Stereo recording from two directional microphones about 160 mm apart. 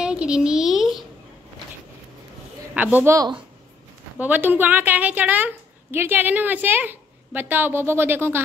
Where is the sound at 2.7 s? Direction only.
10° right (ahead or behind).